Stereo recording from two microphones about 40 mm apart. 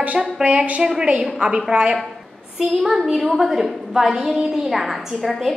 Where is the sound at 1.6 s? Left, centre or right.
Right.